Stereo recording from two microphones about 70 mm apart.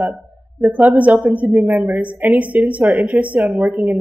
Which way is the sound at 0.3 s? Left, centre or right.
Right.